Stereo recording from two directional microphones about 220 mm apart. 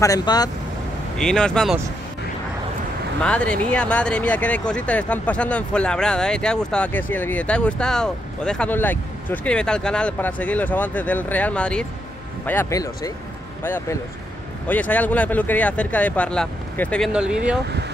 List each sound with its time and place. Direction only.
0.0 s speech: 15° left (ahead or behind)
1.1 s speech: 5° left (ahead or behind)
3.2 s speech: 5° left (ahead or behind)